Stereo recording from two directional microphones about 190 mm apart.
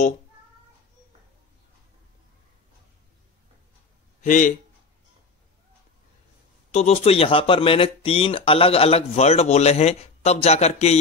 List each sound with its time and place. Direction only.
4.2 s a man's voice: 40° left (ahead or behind)
6.7 s speech: 35° left (ahead or behind)